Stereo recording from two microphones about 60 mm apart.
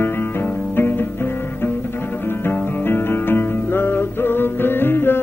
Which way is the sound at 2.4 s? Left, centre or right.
Left.